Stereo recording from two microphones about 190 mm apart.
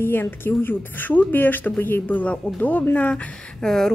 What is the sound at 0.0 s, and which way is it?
Speech, 10° left (ahead or behind).